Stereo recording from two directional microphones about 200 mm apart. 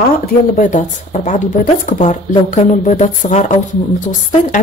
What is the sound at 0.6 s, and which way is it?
A woman's voice, 40° left (ahead or behind).